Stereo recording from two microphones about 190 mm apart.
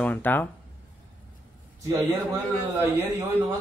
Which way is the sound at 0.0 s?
10° left (ahead or behind).